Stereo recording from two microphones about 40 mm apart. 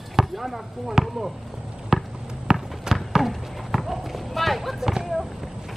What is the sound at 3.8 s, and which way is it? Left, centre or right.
Clip-clop, centre.